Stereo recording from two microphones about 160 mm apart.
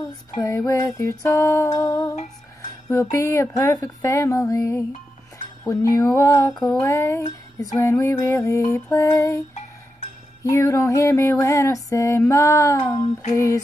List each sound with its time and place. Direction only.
0.7 s female singing: 20° left (ahead or behind)
5.6 s music: 20° left (ahead or behind)
6.1 s female singing: 20° left (ahead or behind)
10.5 s female singing: 20° left (ahead or behind)